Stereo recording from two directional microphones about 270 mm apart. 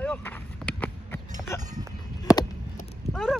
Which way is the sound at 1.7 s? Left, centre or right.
Centre.